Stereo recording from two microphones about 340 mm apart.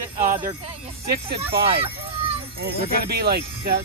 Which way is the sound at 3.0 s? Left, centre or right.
Right.